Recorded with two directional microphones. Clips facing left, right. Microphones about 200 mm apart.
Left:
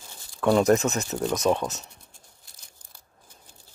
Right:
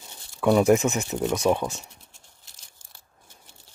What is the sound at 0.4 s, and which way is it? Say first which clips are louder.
Speech: right 1 dB; 10° right (ahead or behind).